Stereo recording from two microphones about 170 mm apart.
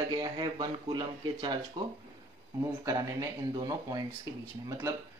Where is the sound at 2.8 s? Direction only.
20° right (ahead or behind).